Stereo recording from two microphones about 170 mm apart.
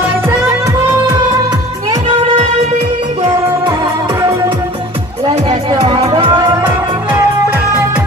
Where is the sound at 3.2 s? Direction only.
25° right (ahead or behind).